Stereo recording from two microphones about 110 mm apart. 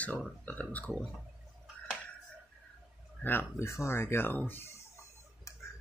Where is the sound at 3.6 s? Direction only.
25° left (ahead or behind).